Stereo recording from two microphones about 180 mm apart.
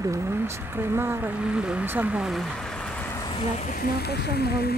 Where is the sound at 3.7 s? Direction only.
60° left (ahead or behind).